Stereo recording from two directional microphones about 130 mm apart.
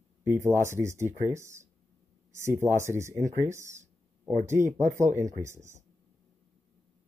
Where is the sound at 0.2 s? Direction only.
20° right (ahead or behind).